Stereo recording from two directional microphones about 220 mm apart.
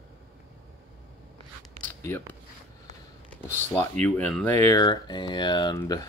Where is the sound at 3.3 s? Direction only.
10° left (ahead or behind).